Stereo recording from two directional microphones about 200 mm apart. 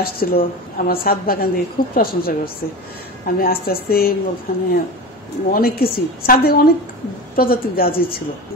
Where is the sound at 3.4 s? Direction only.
50° left (ahead or behind).